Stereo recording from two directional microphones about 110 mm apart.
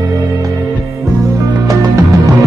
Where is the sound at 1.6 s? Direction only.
30° right (ahead or behind).